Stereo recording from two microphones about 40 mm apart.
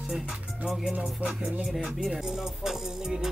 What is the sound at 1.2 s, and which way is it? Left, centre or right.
Music, right.